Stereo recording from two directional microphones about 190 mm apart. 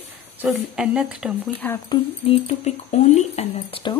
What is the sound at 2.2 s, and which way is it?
Speech, 35° left (ahead or behind).